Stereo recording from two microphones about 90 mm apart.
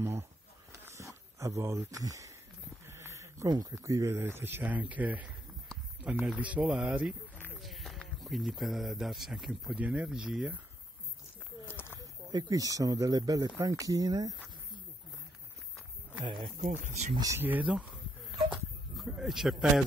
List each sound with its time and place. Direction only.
0.0 s a sound: 30° right (ahead or behind)
3.4 s a man's voice: 45° right (ahead or behind)
4.2 s speech: 25° right (ahead or behind)
7.6 s speech: centre (ahead or behind)
9.8 s speech: 15° right (ahead or behind)
11.6 s a sound: 25° left (ahead or behind)
12.0 s a man's voice: 45° right (ahead or behind)
16.2 s speech: 60° right (ahead or behind)
17.1 s speech: 45° right (ahead or behind)
17.4 s speech: 20° right (ahead or behind)
18.9 s speech: 5° right (ahead or behind)